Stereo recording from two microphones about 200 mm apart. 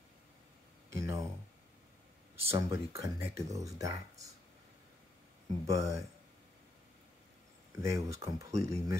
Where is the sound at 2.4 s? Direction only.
15° right (ahead or behind).